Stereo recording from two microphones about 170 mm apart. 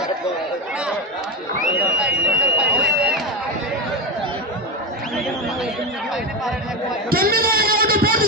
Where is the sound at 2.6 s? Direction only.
5° right (ahead or behind).